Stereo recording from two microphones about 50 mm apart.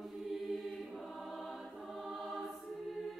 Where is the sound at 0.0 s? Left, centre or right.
Centre.